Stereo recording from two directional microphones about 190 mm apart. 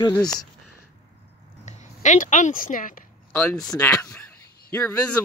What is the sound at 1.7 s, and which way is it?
A woman's voice, 40° left (ahead or behind).